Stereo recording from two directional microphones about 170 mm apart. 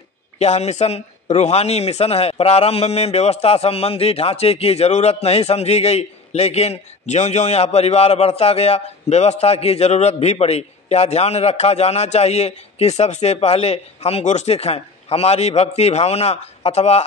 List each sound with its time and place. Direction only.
0.4 s a man's voice: 40° left (ahead or behind)